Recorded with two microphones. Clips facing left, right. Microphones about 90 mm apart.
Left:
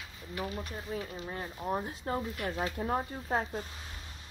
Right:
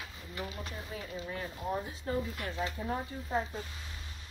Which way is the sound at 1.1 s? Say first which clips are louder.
Even; 35° left (ahead or behind).